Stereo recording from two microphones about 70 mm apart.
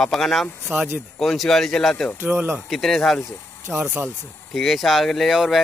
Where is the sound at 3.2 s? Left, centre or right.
Left.